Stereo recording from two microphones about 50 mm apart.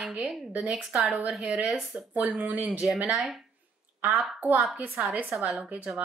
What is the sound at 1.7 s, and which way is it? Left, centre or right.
Speech, centre.